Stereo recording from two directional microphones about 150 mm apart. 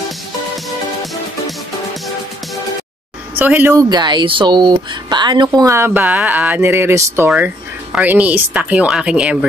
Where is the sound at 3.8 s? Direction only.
25° right (ahead or behind).